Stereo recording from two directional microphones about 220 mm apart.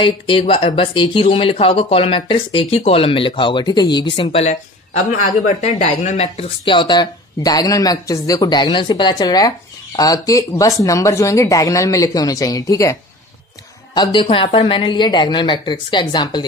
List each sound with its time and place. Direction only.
0.0 s speech: 25° left (ahead or behind)
13.9 s speech: 20° left (ahead or behind)